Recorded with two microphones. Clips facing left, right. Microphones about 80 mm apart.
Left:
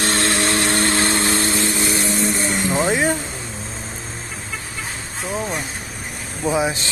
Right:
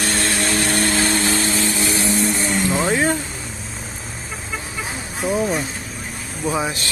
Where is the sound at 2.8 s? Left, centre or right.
Centre.